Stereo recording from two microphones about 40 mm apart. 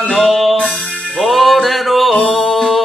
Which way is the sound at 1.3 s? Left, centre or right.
Centre.